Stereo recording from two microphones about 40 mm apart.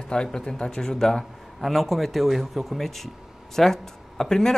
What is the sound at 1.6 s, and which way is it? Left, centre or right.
A man's voice, centre.